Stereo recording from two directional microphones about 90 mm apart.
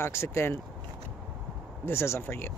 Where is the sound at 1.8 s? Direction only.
30° left (ahead or behind).